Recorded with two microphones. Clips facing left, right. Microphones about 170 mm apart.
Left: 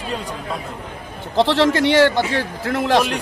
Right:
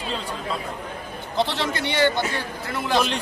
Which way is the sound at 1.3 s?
90° left.